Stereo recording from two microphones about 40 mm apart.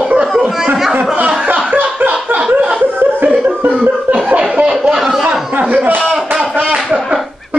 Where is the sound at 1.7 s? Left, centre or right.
Right.